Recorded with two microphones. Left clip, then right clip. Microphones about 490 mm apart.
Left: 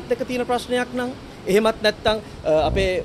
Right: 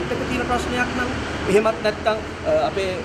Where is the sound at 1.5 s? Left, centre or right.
Left.